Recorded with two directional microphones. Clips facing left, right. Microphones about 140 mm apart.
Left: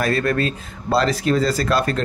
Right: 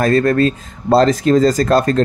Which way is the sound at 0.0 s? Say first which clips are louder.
Right 7 dB; 40° right (ahead or behind).